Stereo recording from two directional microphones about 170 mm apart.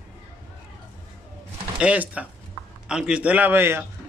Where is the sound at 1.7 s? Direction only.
5° right (ahead or behind).